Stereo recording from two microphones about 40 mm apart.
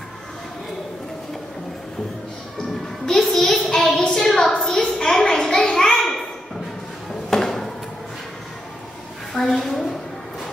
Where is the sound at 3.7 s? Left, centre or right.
Centre.